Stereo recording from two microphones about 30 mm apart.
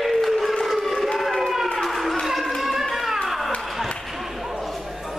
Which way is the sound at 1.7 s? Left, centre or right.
Centre.